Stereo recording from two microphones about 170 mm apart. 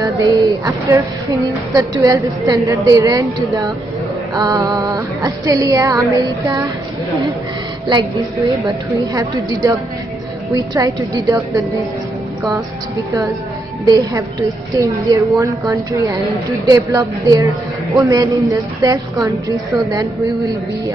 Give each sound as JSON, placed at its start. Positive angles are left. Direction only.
{"t": 0.2, "sound": "a woman's voice", "side_deg": -20}
{"t": 7.9, "sound": "a woman's voice", "side_deg": -25}
{"t": 13.8, "sound": "a woman's voice", "side_deg": -20}